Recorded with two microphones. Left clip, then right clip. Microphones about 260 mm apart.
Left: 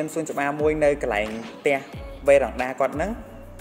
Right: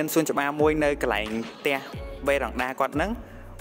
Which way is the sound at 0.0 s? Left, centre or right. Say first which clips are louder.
Right 1 dB; right.